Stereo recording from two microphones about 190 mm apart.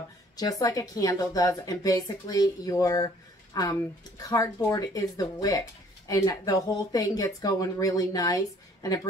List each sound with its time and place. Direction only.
0.4 s speech: 20° left (ahead or behind)